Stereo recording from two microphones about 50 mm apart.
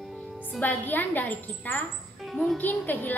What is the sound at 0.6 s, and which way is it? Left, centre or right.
A woman's voice, left.